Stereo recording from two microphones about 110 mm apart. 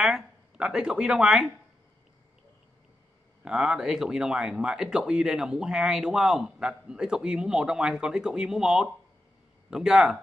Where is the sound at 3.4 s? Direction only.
5° right (ahead or behind).